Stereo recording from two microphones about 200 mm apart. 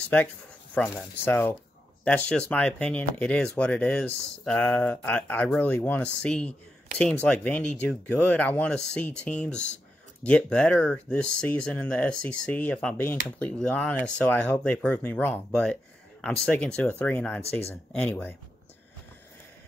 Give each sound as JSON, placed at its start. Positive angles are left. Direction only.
{"t": 0.0, "sound": "speech", "side_deg": 5}
{"t": 17.4, "sound": "speech", "side_deg": 30}
{"t": 17.9, "sound": "speech", "side_deg": 5}